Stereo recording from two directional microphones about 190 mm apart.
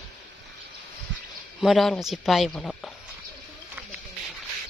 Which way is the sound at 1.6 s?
Centre (ahead or behind).